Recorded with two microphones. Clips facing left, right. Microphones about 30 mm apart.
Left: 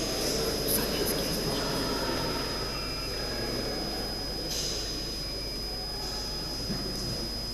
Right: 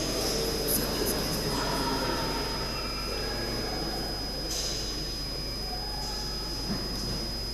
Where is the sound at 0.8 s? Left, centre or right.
Centre.